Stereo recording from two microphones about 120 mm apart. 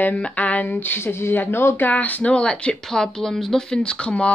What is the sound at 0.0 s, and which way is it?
Speech, 10° left (ahead or behind).